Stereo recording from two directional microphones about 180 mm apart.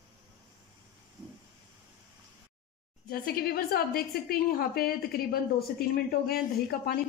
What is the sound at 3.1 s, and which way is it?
A woman's voice, 55° left (ahead or behind).